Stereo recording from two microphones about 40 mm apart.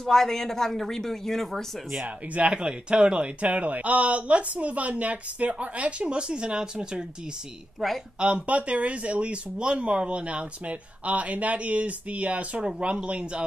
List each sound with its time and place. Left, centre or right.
0.0 s a woman's voice: centre
2.4 s speech: right
7.8 s speech: centre
8.2 s speech: right
12.6 s speech: right